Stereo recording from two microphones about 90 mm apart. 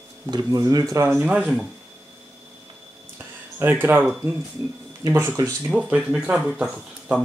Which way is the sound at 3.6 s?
25° right (ahead or behind).